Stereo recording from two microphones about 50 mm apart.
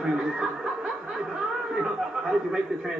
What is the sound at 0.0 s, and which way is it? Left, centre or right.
Snicker, centre.